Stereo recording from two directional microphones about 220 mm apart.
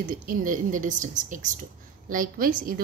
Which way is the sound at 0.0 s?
40° right (ahead or behind).